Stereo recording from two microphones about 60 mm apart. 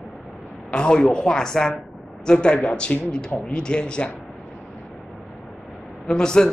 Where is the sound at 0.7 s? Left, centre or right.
Centre.